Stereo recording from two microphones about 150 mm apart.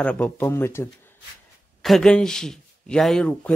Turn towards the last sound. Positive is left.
turn(degrees=5)  # may be behind; listen again after turning